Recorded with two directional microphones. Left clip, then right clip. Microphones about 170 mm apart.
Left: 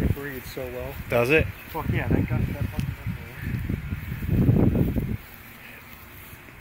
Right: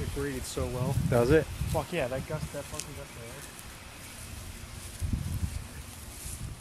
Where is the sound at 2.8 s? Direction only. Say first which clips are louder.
Left 5 dB; 20° left (ahead or behind).